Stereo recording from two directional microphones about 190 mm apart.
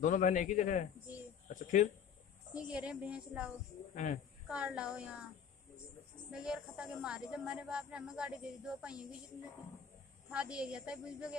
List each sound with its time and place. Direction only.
0.0 s a man's voice: 45° left (ahead or behind)
2.5 s a woman's voice: 5° right (ahead or behind)
3.9 s a man's voice: 45° left (ahead or behind)
4.5 s a woman's voice: 5° right (ahead or behind)
6.3 s a woman's voice: 5° right (ahead or behind)
10.3 s a woman's voice: 5° right (ahead or behind)